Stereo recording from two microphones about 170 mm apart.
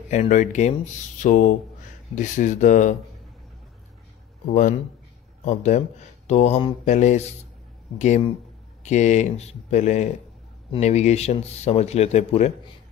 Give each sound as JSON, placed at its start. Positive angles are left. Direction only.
{"t": 0.1, "sound": "speech", "side_deg": 45}
{"t": 5.4, "sound": "speech", "side_deg": 45}